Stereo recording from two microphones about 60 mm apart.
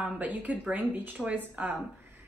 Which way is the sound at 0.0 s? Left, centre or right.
Right.